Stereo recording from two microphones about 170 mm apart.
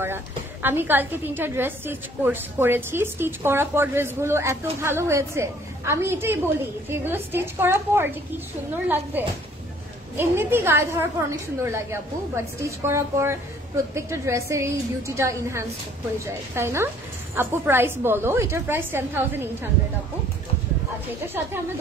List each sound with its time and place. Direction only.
0.0 s a woman's voice: 15° right (ahead or behind)